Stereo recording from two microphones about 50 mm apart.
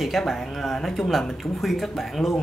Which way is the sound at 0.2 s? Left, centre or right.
Centre.